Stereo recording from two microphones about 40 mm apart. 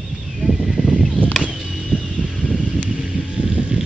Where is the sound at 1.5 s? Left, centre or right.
Centre.